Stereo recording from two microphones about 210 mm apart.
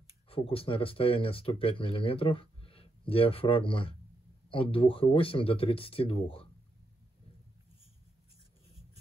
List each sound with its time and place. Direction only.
0.3 s speech: 25° left (ahead or behind)